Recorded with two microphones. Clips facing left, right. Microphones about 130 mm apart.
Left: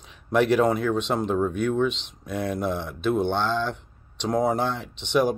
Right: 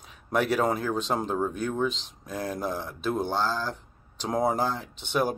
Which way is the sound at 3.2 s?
5° right (ahead or behind).